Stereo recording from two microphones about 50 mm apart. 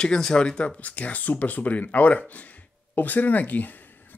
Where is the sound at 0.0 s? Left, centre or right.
Centre.